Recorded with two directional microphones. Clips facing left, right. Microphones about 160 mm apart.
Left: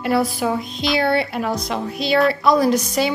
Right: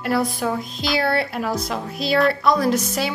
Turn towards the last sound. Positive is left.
turn(degrees=0)  # may be behind; listen again after turning